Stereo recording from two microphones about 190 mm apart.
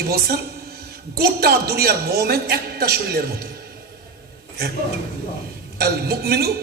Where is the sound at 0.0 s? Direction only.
55° right (ahead or behind).